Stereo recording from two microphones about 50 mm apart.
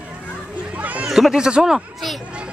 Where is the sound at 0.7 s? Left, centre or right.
Right.